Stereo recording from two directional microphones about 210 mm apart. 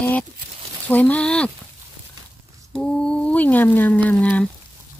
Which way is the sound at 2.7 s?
5° left (ahead or behind).